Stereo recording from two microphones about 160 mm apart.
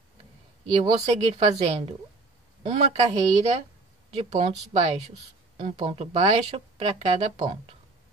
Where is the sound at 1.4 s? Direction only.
40° right (ahead or behind).